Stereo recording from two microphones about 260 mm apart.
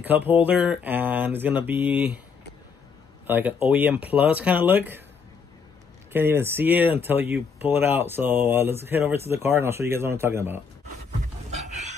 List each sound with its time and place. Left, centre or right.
0.0 s speech: centre
3.3 s speech: centre
6.1 s speech: centre